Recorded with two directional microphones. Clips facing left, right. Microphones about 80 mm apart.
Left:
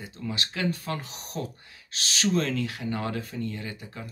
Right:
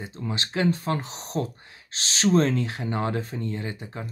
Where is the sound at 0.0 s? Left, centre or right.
Right.